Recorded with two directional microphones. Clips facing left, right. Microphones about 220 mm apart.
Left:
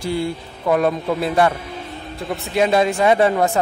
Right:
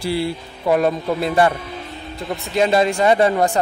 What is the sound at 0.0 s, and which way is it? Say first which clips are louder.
Speech: right 1 dB; 5° right (ahead or behind).